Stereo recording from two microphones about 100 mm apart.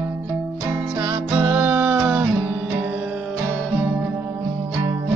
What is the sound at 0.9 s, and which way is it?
Music, 25° right (ahead or behind).